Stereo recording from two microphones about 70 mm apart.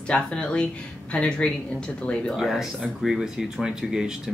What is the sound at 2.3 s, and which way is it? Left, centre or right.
Speech, centre.